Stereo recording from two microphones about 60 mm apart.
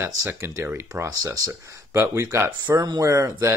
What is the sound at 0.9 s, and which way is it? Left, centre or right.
Speech, right.